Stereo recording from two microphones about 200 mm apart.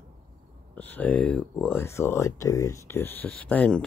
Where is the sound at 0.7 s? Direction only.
10° left (ahead or behind).